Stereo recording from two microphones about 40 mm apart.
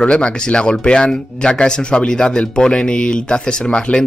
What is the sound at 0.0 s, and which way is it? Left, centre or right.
A man's voice, left.